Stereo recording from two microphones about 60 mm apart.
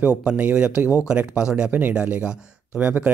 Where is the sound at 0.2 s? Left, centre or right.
Right.